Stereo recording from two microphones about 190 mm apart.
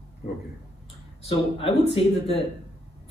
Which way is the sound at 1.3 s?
30° left (ahead or behind).